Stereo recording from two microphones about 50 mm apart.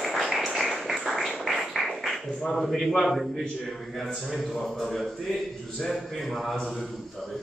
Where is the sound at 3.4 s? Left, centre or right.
Centre.